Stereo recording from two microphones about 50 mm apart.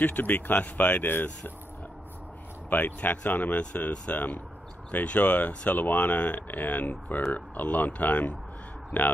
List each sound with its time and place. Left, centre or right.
0.0 s speech: left
2.7 s speech: left
3.9 s speech: left